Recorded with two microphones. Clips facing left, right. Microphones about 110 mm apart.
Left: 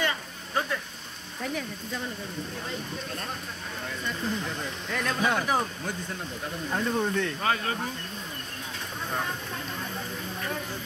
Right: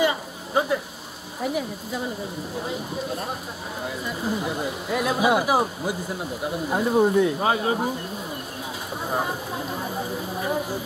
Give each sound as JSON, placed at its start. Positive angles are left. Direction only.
{"t": 0.0, "sound": "a sound", "side_deg": -15}
{"t": 1.4, "sound": "speech", "side_deg": -10}
{"t": 9.1, "sound": "speech", "side_deg": -15}